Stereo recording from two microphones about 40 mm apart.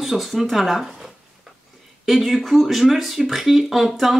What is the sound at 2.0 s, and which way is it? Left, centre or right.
Speech, centre.